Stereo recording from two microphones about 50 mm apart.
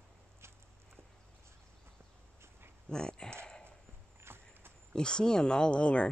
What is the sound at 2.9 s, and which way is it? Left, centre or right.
Speech, centre.